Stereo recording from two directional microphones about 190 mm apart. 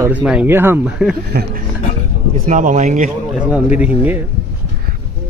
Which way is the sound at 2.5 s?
40° right (ahead or behind).